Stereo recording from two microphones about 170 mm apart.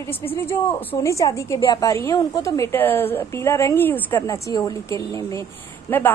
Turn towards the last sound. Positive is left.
turn(degrees=15)  # may be behind; listen again after turning